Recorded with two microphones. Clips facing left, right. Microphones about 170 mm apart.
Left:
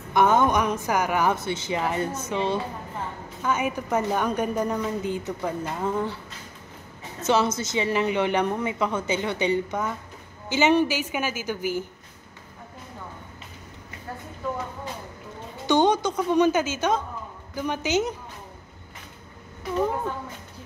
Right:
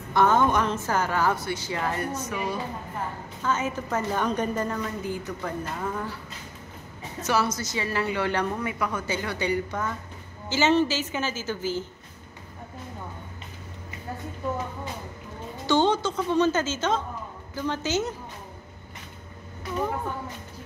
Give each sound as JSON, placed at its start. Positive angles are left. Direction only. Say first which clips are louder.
{"t": 0.1, "sound": "a woman's voice", "louder": "left 1 dB", "side_deg": 15}
{"t": 3.4, "sound": "a woman's voice", "louder": "left 2 dB", "side_deg": 15}
{"t": 7.2, "sound": "a woman's voice", "louder": "left 3 dB", "side_deg": 25}
{"t": 15.6, "sound": "a woman's voice", "louder": "left 2 dB", "side_deg": 15}